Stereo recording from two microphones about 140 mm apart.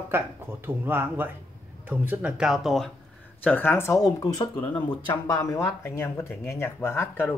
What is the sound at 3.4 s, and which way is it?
Speech, 15° left (ahead or behind).